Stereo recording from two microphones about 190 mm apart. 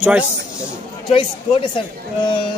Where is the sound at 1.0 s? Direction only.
25° left (ahead or behind).